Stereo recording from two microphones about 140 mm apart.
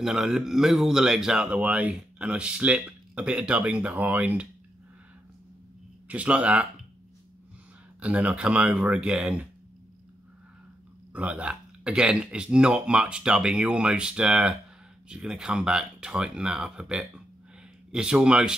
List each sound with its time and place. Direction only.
0.0 s speech: 5° right (ahead or behind)
6.0 s speech: 10° right (ahead or behind)
8.0 s speech: 10° right (ahead or behind)
11.1 s speech: 10° right (ahead or behind)